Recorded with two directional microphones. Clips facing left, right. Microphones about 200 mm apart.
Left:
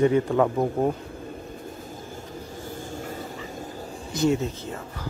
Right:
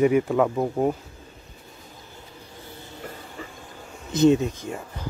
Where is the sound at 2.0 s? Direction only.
45° left (ahead or behind).